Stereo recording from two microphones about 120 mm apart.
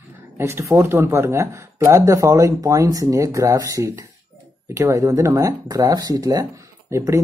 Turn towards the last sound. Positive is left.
turn(degrees=-25)  # may be behind; listen again after turning